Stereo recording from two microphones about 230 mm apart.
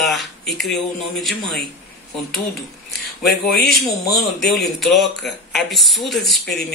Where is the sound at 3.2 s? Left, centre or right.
Left.